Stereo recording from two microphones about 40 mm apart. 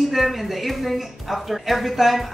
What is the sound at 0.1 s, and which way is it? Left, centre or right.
A woman's voice, centre.